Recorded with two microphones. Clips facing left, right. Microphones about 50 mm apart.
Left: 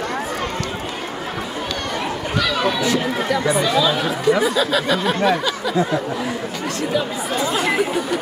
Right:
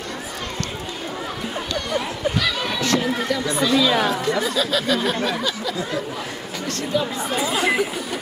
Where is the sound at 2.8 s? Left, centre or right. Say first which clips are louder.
Left 1 dB; centre.